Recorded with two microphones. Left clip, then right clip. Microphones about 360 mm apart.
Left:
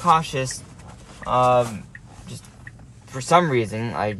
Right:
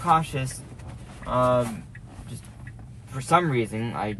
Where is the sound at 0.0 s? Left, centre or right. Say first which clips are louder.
Left 4 dB; left.